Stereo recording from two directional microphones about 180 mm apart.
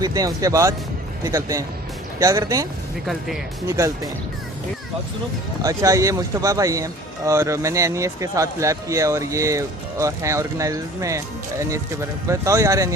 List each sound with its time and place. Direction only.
0.0 s speech: 20° right (ahead or behind)
5.6 s speech: 20° right (ahead or behind)
12.3 s speech: 15° right (ahead or behind)